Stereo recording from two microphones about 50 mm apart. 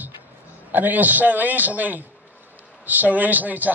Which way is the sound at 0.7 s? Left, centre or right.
Right.